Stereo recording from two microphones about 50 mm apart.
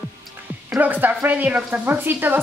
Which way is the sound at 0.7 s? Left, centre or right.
Right.